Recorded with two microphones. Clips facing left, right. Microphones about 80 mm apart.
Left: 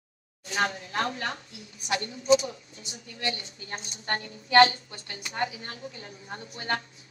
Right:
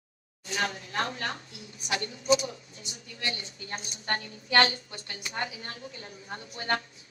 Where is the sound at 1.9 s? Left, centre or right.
Left.